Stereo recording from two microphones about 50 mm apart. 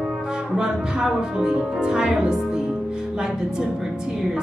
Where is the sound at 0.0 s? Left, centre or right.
Centre.